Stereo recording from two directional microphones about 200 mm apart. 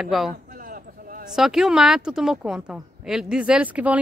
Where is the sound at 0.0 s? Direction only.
Centre (ahead or behind).